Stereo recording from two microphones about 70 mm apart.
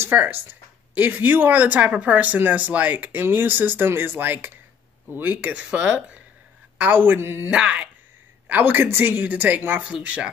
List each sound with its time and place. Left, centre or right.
0.0 s speech: right
7.4 s speech: centre
8.5 s speech: right